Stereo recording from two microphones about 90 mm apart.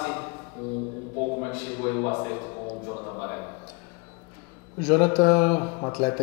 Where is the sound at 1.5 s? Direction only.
15° left (ahead or behind).